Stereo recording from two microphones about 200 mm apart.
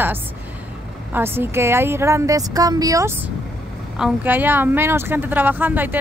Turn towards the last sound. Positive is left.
turn(degrees=-10)  # may be behind; listen again after turning